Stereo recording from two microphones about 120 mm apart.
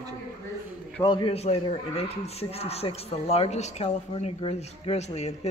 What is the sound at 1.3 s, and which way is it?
Speech, 60° left (ahead or behind).